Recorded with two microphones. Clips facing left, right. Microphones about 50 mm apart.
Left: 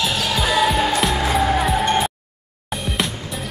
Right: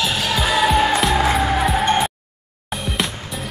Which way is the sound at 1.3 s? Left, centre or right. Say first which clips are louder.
Even; centre.